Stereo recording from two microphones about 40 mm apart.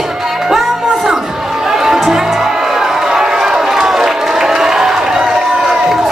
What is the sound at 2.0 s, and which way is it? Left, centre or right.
Music, centre.